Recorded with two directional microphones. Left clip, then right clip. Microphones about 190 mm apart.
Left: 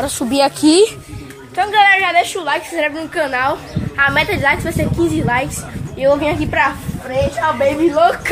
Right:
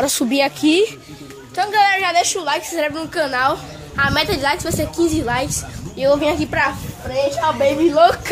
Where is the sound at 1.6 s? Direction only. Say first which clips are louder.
Left 4 dB; 5° right (ahead or behind).